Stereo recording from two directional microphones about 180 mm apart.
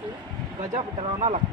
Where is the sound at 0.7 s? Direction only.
40° right (ahead or behind).